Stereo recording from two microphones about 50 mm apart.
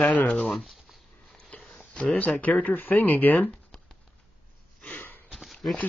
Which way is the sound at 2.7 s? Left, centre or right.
Left.